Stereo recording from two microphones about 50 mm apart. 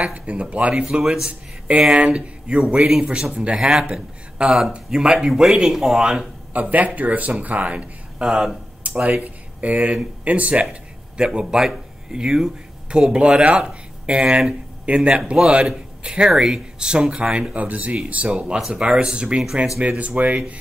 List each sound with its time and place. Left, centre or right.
0.1 s speech: right
0.8 s speech: centre
1.7 s speech: right
2.6 s speech: centre
3.0 s speech: right
6.5 s speech: right
8.2 s speech: centre
8.8 s a sound: right
9.2 s speech: right
16.3 s speech: centre
18.6 s speech: centre
18.9 s speech: right
19.2 s speech: centre
20.0 s speech: right